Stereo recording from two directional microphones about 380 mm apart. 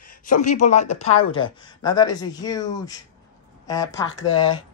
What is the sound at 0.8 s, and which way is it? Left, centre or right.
Speech, left.